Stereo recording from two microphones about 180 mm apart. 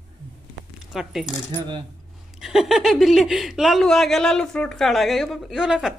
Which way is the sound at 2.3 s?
Centre (ahead or behind).